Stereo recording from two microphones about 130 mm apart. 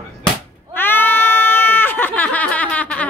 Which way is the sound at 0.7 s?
15° left (ahead or behind).